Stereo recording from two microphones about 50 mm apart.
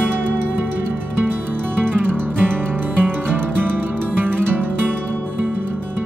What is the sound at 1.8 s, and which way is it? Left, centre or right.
Music, right.